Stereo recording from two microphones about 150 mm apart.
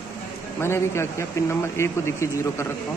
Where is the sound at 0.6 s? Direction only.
15° left (ahead or behind).